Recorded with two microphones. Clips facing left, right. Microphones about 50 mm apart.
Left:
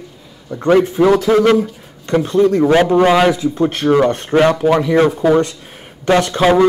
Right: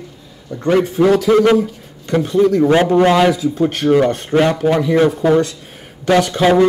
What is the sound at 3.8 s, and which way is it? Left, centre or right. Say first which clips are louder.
Speech: even; left.